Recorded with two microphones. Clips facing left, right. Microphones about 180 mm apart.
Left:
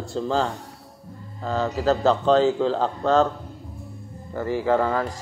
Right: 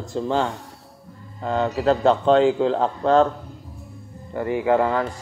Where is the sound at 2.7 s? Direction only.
35° right (ahead or behind).